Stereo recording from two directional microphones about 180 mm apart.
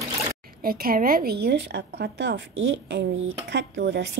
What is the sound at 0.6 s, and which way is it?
Speech, 55° right (ahead or behind).